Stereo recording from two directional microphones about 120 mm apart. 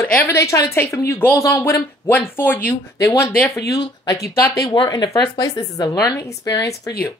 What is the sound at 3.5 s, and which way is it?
A woman's voice, 30° left (ahead or behind).